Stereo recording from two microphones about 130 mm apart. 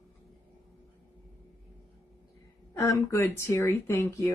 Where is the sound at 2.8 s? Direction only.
20° left (ahead or behind).